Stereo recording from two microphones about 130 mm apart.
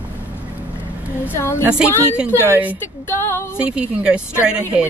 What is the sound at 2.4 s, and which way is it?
Speech, 15° right (ahead or behind).